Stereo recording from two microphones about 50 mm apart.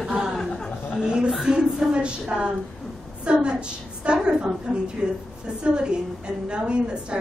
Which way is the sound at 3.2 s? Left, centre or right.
Centre.